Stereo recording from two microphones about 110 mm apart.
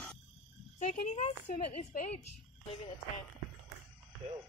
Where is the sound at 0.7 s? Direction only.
90° left.